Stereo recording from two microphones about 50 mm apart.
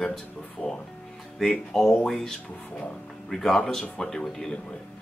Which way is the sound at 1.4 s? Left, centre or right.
Centre.